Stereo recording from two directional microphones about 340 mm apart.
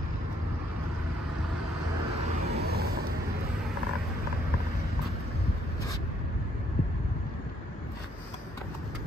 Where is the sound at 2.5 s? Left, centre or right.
Right.